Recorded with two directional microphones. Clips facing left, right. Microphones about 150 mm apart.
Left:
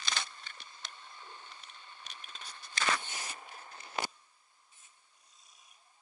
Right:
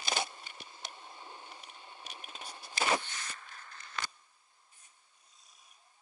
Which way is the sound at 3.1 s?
20° left (ahead or behind).